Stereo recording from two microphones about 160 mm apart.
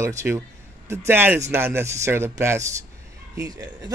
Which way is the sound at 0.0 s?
15° right (ahead or behind).